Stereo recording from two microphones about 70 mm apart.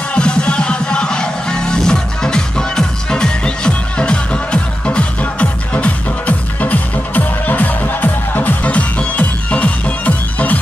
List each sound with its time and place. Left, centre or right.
0.1 s music: centre